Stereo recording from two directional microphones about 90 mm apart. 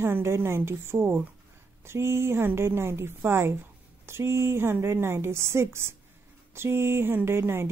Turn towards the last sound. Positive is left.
turn(degrees=-25)  # may be behind; listen again after turning